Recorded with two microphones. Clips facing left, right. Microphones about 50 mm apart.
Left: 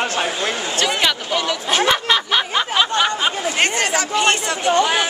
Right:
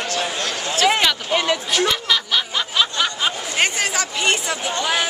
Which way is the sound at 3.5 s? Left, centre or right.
Centre.